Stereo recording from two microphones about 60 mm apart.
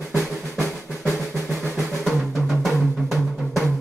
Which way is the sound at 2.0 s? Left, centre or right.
Centre.